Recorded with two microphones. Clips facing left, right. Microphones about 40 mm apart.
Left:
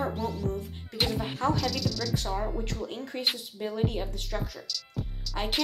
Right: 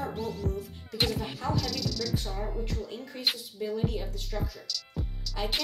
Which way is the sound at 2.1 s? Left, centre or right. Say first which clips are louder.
Left 3 dB; left.